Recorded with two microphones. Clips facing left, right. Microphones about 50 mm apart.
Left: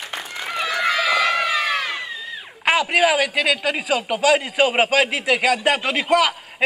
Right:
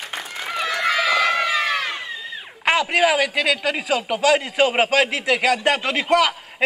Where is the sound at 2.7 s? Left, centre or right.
Centre.